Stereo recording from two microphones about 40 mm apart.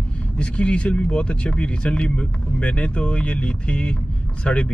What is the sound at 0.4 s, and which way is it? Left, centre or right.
Speech, left.